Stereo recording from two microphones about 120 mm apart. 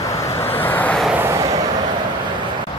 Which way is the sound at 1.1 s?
20° right (ahead or behind).